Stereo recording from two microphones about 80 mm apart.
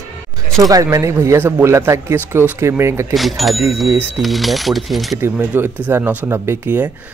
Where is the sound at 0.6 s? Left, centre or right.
Right.